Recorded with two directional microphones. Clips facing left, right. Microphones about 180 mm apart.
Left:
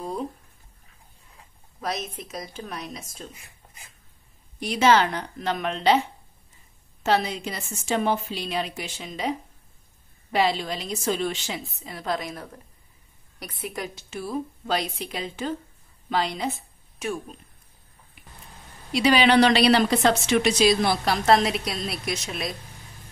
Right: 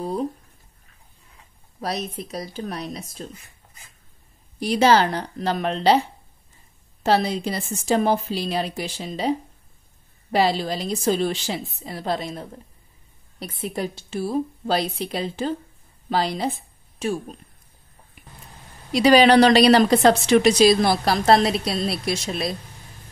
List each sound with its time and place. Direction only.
1.8 s a woman's voice: 35° right (ahead or behind)
4.6 s a woman's voice: 35° right (ahead or behind)
18.9 s a woman's voice: 40° right (ahead or behind)